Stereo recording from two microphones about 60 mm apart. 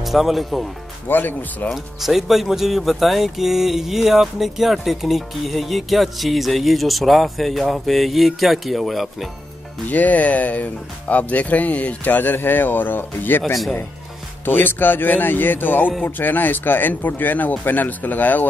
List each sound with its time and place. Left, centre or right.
0.0 s speech: centre
1.0 s speech: left
1.7 s speech: centre
9.8 s speech: left
14.4 s speech: left